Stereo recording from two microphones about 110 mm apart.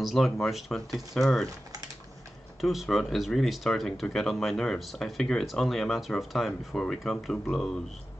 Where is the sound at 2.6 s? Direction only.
Centre (ahead or behind).